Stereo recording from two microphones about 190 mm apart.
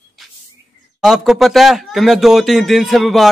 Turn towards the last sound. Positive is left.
turn(degrees=0)  # may be behind; listen again after turning